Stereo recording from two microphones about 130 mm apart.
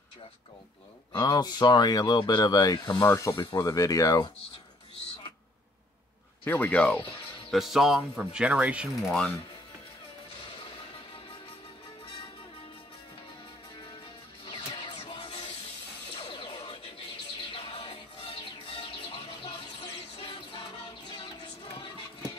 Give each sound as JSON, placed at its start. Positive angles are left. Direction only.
{"t": 1.1, "sound": "speech", "side_deg": 30}
{"t": 6.4, "sound": "speech", "side_deg": 10}
{"t": 7.5, "sound": "speech", "side_deg": 0}
{"t": 9.1, "sound": "speech", "side_deg": 5}
{"t": 14.4, "sound": "music", "side_deg": 40}